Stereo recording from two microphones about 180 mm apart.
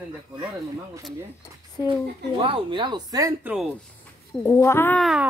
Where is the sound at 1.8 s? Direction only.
20° left (ahead or behind).